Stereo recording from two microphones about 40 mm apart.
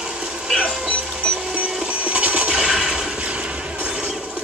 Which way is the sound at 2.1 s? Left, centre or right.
Right.